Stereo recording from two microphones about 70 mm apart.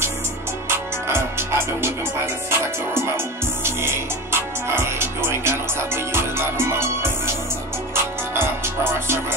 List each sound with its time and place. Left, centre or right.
0.7 s music: right